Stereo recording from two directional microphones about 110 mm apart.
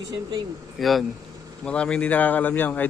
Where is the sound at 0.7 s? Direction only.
Centre (ahead or behind).